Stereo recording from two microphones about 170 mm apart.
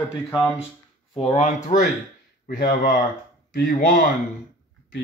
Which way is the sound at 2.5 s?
60° left (ahead or behind).